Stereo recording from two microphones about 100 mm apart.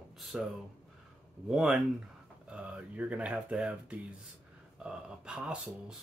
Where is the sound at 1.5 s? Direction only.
5° right (ahead or behind).